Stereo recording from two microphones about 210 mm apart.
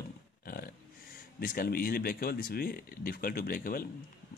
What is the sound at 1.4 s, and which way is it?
Speech, 45° left (ahead or behind).